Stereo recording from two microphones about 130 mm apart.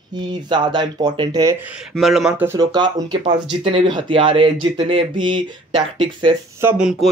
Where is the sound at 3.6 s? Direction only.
45° right (ahead or behind).